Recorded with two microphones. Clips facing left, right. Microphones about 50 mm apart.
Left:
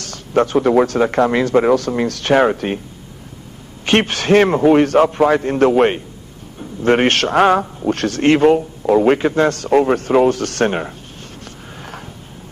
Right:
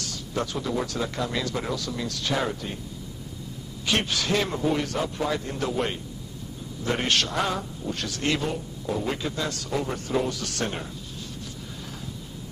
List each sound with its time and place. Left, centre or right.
0.0 s speech: left
3.8 s speech: left
8.5 s speech: left
11.4 s a sound: left